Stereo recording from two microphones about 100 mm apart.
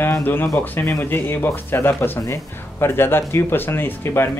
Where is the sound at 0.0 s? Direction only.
20° left (ahead or behind).